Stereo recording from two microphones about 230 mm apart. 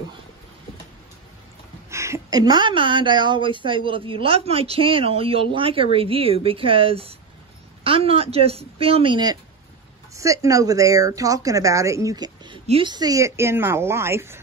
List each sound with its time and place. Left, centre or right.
1.9 s a woman's voice: centre